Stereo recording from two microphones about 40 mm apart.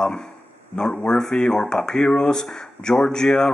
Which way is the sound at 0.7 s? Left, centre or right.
Centre.